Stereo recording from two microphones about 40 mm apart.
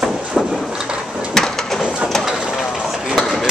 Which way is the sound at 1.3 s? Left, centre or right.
Centre.